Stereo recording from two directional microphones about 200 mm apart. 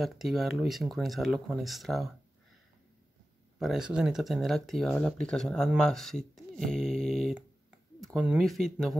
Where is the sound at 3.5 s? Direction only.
Centre (ahead or behind).